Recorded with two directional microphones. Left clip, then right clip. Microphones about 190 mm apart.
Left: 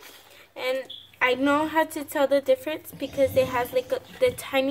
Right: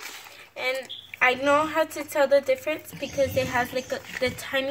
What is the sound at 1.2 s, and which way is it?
A woman's voice, 15° left (ahead or behind).